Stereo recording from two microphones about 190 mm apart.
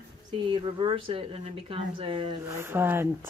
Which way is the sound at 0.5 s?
25° right (ahead or behind).